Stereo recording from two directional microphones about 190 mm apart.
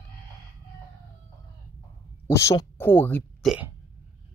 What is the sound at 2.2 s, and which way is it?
Speech, 15° left (ahead or behind).